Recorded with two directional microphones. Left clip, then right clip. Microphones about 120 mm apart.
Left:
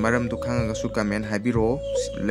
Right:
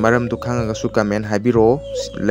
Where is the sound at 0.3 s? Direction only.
45° right (ahead or behind).